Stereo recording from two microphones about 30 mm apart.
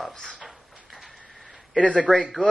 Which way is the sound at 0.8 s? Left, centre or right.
Centre.